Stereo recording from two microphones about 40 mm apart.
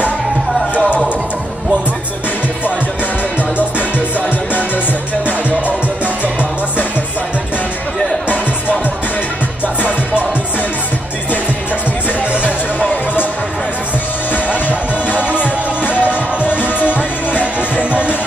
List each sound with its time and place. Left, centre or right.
12.2 s music: right
15.3 s music: left
17.6 s music: right